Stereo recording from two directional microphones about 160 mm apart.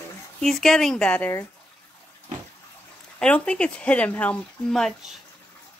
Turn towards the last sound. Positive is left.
turn(degrees=0)  # may be behind; listen again after turning